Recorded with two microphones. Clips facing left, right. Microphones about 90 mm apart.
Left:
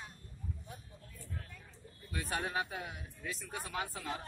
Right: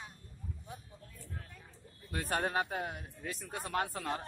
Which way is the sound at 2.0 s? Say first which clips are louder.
Right 4 dB; 50° right (ahead or behind).